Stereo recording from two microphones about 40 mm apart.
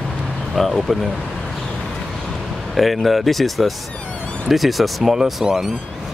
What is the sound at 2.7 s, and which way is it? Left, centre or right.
Speech, centre.